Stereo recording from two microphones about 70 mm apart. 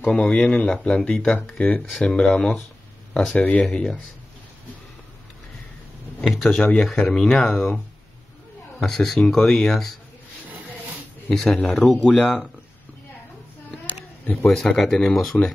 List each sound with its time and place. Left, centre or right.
0.0 s speech: centre
3.3 s speech: left
6.2 s speech: centre
8.7 s speech: centre
11.2 s speech: centre
14.5 s speech: centre